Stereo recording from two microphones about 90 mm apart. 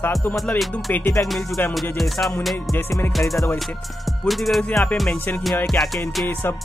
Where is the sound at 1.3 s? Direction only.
Centre (ahead or behind).